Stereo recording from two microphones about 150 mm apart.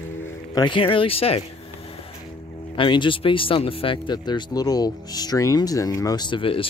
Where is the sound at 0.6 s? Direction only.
35° left (ahead or behind).